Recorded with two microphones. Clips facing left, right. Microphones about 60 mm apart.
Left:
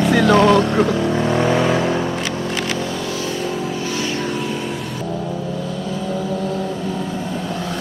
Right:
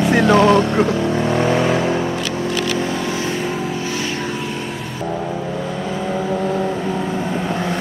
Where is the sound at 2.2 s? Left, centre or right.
Right.